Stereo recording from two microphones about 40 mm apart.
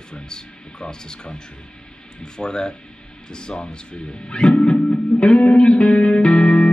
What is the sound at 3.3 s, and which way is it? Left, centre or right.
Music, left.